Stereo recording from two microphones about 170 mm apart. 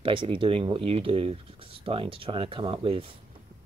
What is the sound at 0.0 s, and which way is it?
Speech, 30° right (ahead or behind).